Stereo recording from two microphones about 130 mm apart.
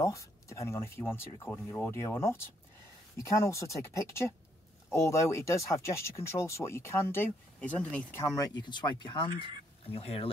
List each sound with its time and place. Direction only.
0.0 s speech: 25° left (ahead or behind)
8.4 s speech: 35° left (ahead or behind)